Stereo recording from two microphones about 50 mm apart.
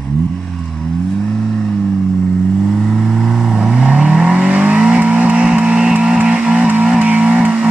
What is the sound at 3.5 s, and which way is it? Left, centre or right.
Vehicle, centre.